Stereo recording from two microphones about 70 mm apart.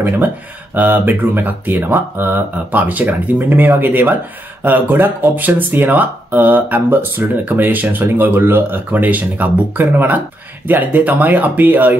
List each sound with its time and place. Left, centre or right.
0.7 s speech: right